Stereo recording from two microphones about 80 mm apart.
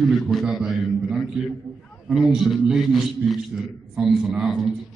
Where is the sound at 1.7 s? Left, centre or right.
Centre.